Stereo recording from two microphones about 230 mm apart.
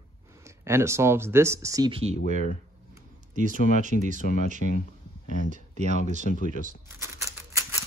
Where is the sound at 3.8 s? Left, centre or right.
Right.